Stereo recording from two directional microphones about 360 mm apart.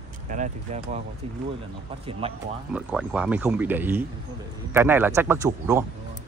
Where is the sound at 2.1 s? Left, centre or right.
Centre.